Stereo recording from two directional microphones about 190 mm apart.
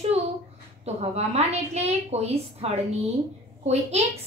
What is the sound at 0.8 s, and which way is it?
A woman's voice, 35° right (ahead or behind).